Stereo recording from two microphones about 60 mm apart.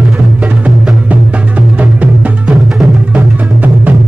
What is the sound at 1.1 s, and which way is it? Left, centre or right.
Music, right.